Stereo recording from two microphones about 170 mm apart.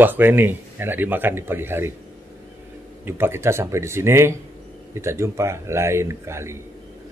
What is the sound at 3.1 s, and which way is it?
Speech, 15° right (ahead or behind).